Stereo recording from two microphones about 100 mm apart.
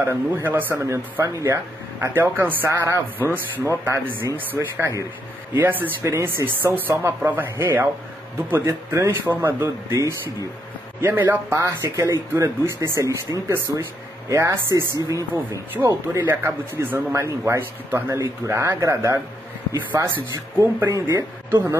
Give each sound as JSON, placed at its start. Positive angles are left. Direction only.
{"t": 0.0, "sound": "speech", "side_deg": -25}
{"t": 11.8, "sound": "speech", "side_deg": -35}